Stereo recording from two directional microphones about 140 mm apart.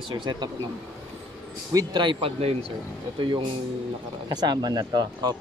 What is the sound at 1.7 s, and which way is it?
Speech, 30° right (ahead or behind).